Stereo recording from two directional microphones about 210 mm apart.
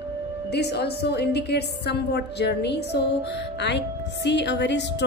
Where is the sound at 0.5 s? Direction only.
50° left (ahead or behind).